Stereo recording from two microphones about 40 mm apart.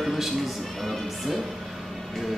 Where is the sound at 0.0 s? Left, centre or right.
Centre.